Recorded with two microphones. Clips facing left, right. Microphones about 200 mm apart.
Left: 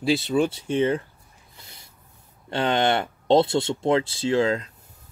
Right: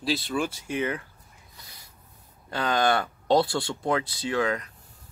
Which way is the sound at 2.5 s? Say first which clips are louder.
Left 2 dB; 25° left (ahead or behind).